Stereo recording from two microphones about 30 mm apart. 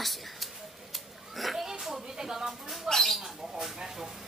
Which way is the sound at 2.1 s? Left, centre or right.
Centre.